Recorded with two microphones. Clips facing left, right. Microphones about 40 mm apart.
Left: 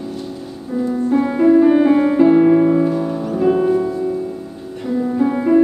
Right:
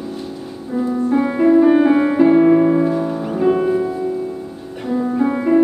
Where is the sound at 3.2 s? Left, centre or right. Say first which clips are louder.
Left 1 dB; centre.